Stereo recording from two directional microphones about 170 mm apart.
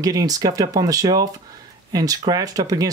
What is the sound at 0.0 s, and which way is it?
Speech, 20° right (ahead or behind).